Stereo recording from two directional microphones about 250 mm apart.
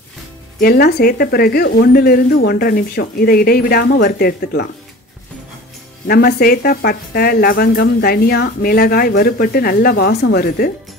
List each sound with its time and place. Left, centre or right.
0.6 s speech: left
6.0 s speech: left